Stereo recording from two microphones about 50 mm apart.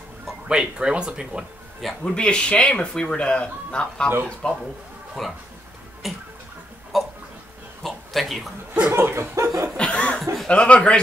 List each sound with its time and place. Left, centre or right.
0.5 s speech: centre
2.0 s speech: centre
5.2 s speech: centre
6.9 s a sound: centre
8.9 s chuckle: right
9.8 s speech: left